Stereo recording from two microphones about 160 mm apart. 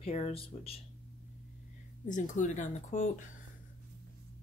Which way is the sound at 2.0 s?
50° left (ahead or behind).